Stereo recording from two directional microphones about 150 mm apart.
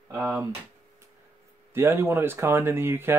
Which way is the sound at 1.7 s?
15° right (ahead or behind).